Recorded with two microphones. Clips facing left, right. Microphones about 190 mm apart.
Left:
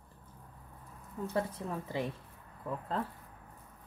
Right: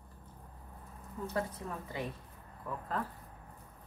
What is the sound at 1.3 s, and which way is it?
Speech, 30° left (ahead or behind).